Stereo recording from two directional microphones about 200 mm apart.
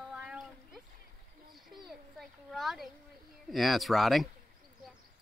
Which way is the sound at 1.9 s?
Centre (ahead or behind).